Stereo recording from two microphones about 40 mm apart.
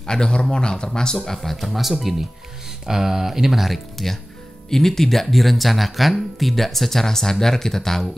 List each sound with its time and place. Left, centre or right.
0.0 s speech: centre
1.7 s speech: centre